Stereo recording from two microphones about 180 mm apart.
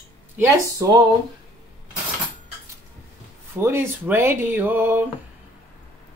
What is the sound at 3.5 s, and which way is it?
Speech, 15° right (ahead or behind).